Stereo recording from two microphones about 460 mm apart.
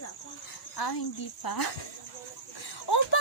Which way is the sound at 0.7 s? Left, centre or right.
Left.